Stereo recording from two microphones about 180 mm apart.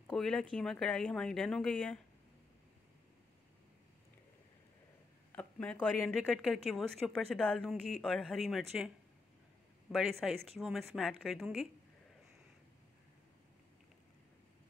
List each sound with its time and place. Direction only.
0.0 s a woman's voice: 5° left (ahead or behind)
5.3 s a woman's voice: 5° left (ahead or behind)
9.9 s a woman's voice: centre (ahead or behind)